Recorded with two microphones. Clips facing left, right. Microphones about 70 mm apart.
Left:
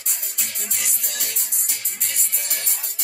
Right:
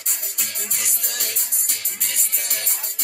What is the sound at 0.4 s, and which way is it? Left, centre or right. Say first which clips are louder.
Music: even; right.